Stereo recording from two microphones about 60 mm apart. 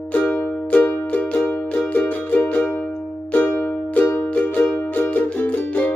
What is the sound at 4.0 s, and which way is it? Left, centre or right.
Music, left.